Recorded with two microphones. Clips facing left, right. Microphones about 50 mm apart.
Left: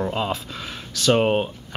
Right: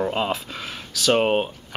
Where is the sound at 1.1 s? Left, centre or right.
Centre.